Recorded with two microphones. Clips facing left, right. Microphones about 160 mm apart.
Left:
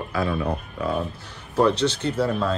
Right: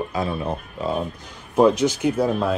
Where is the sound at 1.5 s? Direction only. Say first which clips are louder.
Right 3 dB; 10° right (ahead or behind).